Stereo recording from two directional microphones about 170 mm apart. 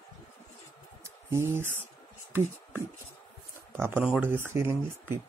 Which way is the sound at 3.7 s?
10° right (ahead or behind).